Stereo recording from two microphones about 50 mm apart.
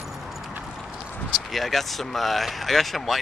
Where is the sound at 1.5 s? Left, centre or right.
Centre.